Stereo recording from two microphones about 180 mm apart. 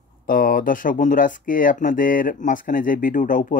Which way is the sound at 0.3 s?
50° left (ahead or behind).